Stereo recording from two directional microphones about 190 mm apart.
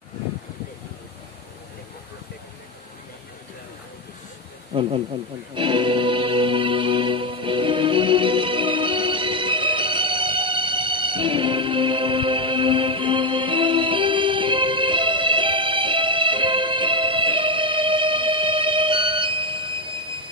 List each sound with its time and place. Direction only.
4.7 s speech: 30° right (ahead or behind)
5.5 s music: 25° right (ahead or behind)